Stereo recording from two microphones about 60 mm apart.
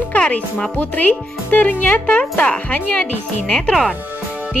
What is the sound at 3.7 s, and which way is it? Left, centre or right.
Speech, centre.